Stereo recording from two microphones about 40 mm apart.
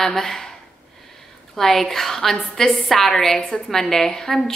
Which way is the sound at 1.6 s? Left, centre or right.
Centre.